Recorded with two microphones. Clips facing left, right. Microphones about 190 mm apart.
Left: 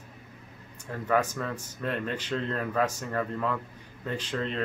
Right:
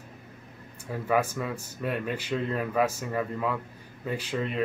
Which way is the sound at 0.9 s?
10° right (ahead or behind).